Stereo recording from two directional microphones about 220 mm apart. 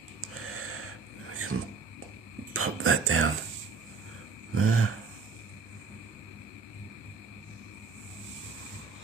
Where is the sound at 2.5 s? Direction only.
75° right (ahead or behind).